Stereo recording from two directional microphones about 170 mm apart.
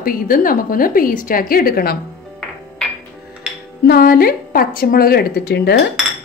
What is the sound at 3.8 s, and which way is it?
Speech, 60° left (ahead or behind).